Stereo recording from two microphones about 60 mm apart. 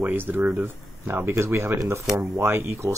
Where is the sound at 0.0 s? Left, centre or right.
Right.